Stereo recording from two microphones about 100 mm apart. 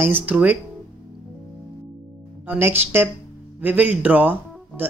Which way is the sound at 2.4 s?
20° right (ahead or behind).